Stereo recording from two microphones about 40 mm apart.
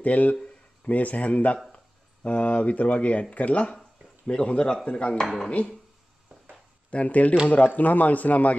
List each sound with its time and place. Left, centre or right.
0.0 s speech: left
4.3 s speech: left
4.8 s speech: left
6.9 s a man's voice: left